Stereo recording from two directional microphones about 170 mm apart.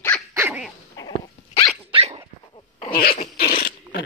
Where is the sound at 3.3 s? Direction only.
60° left (ahead or behind).